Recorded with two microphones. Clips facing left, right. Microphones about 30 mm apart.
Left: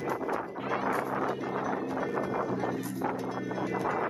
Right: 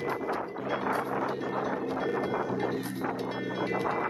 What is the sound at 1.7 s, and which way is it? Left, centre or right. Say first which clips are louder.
Music: right 1 dB; right.